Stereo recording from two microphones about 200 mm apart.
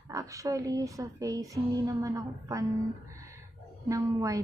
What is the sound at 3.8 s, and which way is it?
Speech, 15° right (ahead or behind).